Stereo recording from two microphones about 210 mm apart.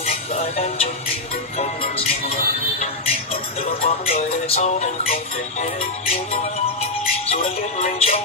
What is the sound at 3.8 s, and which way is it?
Music, 30° left (ahead or behind).